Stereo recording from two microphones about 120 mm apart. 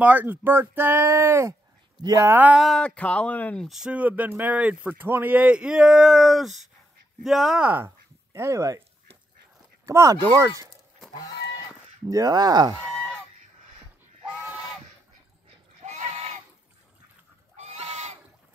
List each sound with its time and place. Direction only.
0.0 s speech: 15° right (ahead or behind)
2.0 s speech: 35° right (ahead or behind)
2.2 s speech: 15° right (ahead or behind)
2.6 s speech: 5° left (ahead or behind)
3.6 s speech: 5° right (ahead or behind); by 8.8 s 25° right (ahead or behind)
9.8 s speech: 30° right (ahead or behind)
12.1 s speech: 30° right (ahead or behind)
12.8 s goose: 10° left (ahead or behind)
15.8 s a sound: 75° right (ahead or behind)
17.6 s goat: 65° right (ahead or behind)